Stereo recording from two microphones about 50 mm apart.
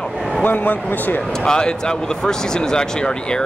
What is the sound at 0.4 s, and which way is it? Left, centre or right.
Speech, left.